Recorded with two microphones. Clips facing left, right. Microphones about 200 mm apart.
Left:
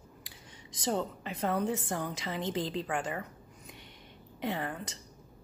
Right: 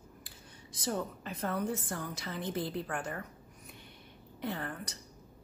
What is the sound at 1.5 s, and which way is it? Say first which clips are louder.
A woman's voice: left 3 dB; 80° left.